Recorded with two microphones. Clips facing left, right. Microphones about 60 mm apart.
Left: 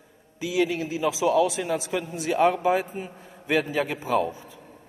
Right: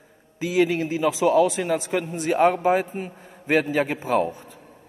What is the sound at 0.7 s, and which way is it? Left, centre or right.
A man's voice, right.